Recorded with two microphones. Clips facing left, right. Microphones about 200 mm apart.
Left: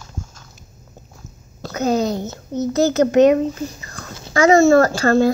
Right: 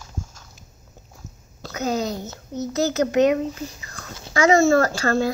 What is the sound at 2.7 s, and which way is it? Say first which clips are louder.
A child's voice: left 5 dB; 40° left (ahead or behind).